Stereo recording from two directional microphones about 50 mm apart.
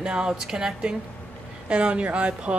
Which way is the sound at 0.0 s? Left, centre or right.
Centre.